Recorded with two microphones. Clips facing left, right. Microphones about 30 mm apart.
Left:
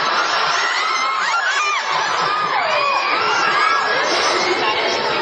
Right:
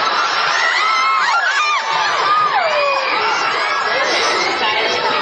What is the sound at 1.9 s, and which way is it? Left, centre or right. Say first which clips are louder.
Crowd: right 3 dB; right.